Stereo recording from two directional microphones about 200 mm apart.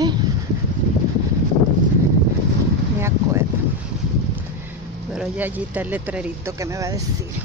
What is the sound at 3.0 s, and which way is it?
Speech, 15° right (ahead or behind).